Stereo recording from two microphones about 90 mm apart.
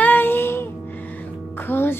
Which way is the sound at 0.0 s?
20° left (ahead or behind).